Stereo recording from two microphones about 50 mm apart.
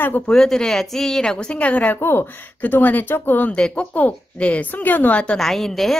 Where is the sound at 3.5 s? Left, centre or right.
Left.